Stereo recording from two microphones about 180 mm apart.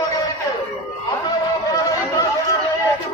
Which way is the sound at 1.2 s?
20° left (ahead or behind).